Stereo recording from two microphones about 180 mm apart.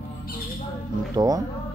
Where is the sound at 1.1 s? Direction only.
20° right (ahead or behind).